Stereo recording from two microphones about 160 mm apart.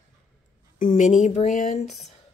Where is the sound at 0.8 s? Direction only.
50° left (ahead or behind).